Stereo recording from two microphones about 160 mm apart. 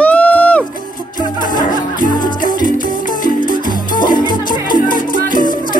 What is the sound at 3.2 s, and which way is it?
Music, 60° left (ahead or behind).